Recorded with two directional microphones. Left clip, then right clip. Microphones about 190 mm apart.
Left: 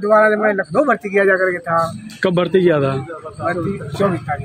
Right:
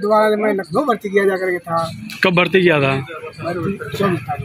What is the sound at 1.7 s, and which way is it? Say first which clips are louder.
A man's voice: left 3 dB; 5° left (ahead or behind).